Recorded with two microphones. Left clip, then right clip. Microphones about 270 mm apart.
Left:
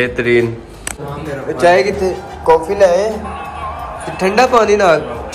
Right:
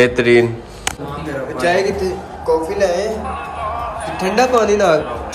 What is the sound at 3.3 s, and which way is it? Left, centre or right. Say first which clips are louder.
Music: right 1 dB; right.